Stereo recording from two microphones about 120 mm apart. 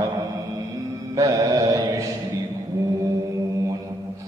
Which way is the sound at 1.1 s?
30° right (ahead or behind).